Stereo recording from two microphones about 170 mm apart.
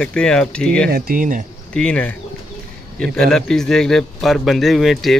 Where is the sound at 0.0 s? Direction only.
5° left (ahead or behind).